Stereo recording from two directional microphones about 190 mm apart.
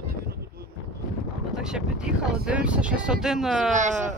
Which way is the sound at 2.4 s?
5° right (ahead or behind).